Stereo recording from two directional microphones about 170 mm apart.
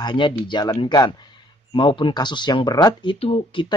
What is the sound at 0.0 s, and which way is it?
Speech, 30° left (ahead or behind).